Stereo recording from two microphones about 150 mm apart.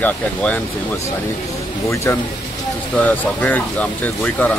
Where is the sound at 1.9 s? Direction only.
20° left (ahead or behind).